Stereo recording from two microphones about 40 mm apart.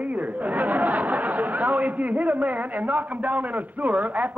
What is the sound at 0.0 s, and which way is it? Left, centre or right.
A man's voice, right.